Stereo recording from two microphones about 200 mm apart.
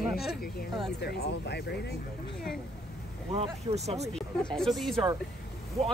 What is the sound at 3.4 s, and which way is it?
Speech, 30° right (ahead or behind).